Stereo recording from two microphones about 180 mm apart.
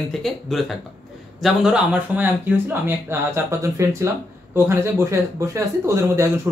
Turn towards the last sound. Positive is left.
turn(degrees=-15)  # may be behind; listen again after turning